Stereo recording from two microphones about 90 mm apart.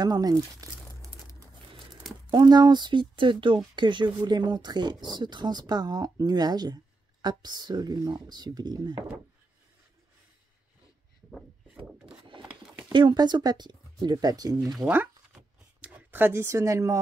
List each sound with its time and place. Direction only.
0.0 s speech: 45° right (ahead or behind)
2.3 s speech: 50° right (ahead or behind)
12.9 s speech: 55° right (ahead or behind)
15.8 s speech: 20° right (ahead or behind); by 17.0 s 35° right (ahead or behind)